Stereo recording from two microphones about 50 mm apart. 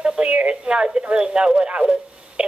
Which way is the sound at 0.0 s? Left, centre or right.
Centre.